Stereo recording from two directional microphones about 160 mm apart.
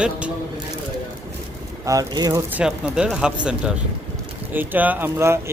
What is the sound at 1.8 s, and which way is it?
Speech, 20° right (ahead or behind).